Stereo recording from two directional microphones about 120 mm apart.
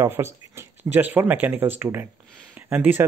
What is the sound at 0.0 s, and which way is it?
Speech, 20° right (ahead or behind).